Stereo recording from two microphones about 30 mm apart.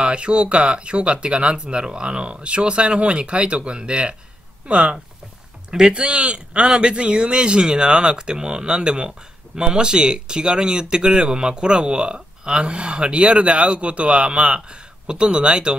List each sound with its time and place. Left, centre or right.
0.0 s speech: right
5.7 s speech: right
5.9 s speech: right